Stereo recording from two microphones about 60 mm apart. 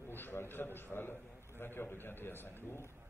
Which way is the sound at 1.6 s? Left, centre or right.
Left.